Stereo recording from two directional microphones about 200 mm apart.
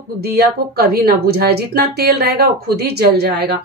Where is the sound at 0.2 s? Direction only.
50° right (ahead or behind).